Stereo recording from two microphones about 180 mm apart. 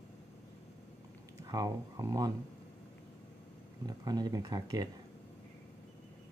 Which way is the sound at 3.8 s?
20° right (ahead or behind).